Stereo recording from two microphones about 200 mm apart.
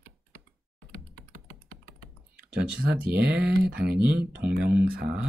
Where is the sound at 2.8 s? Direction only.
55° right (ahead or behind).